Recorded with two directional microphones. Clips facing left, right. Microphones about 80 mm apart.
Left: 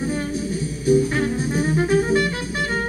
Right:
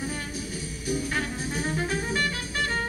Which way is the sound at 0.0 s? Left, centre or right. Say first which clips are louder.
Left 9 dB; left.